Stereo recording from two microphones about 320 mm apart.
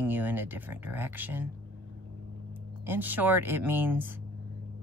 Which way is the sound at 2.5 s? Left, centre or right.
Centre.